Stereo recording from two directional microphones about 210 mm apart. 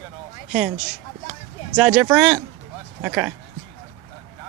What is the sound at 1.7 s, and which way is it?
Speech, 5° right (ahead or behind).